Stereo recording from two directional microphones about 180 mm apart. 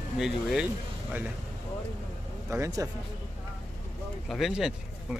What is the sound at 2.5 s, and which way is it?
Speech, 15° right (ahead or behind).